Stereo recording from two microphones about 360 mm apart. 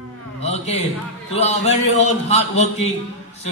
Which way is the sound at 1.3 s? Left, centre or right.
Centre.